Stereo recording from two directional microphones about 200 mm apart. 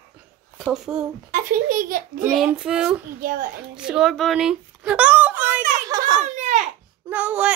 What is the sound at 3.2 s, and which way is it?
Speech, 45° right (ahead or behind).